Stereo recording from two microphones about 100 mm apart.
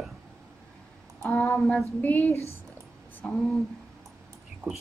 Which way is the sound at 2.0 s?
20° left (ahead or behind).